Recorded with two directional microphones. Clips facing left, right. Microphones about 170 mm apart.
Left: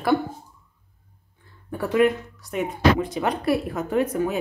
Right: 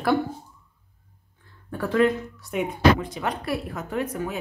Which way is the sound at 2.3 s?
Centre (ahead or behind).